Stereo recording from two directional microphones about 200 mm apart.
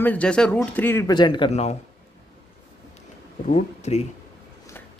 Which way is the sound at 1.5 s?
35° left (ahead or behind).